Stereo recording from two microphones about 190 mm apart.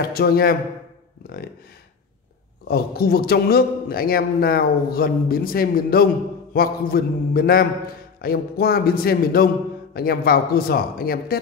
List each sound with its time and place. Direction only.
0.1 s a man's voice: 50° left (ahead or behind)
1.2 s a sound: 50° left (ahead or behind)
2.7 s a man's voice: 55° left (ahead or behind)